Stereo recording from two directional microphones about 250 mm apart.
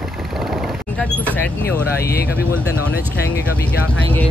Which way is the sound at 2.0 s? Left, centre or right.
Left.